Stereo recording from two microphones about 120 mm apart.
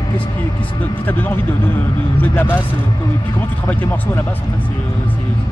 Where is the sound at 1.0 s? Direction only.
15° left (ahead or behind).